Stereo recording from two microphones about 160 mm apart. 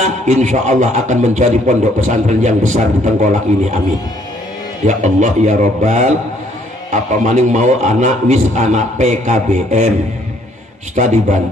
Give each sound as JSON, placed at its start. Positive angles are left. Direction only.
{"t": 0.0, "sound": "a man's voice", "side_deg": -50}
{"t": 4.8, "sound": "a man's voice", "side_deg": -50}
{"t": 11.0, "sound": "a man's voice", "side_deg": -50}